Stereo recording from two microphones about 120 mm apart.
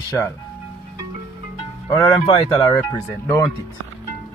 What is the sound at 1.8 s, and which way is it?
Speech, 35° left (ahead or behind).